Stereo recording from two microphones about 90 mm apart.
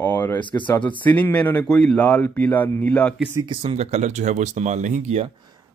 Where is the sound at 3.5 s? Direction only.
65° right (ahead or behind).